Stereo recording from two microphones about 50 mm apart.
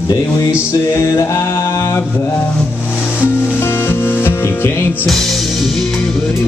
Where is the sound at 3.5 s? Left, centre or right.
Left.